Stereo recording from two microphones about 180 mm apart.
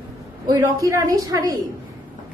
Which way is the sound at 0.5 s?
20° right (ahead or behind).